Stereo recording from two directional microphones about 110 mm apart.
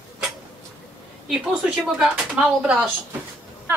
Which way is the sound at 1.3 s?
5° right (ahead or behind).